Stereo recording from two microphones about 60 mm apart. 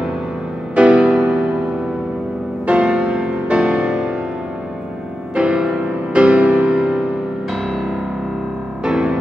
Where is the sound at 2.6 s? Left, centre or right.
Centre.